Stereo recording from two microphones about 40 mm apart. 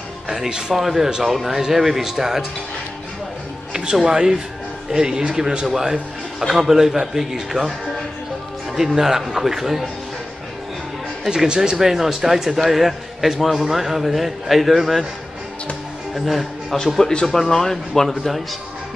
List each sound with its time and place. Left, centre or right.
0.5 s speech: centre
0.7 s speech: centre
3.7 s speech: centre
8.7 s speech: centre
11.2 s speech: centre
17.0 s speech: centre